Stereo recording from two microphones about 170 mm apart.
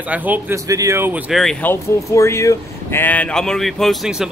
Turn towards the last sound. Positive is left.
turn(degrees=0)  # may be behind; listen again after turning